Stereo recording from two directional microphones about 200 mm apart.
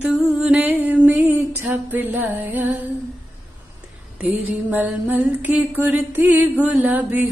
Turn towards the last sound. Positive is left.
turn(degrees=-10)  # may be behind; listen again after turning